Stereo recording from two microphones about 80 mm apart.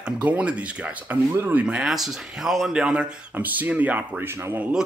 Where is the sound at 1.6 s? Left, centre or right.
Centre.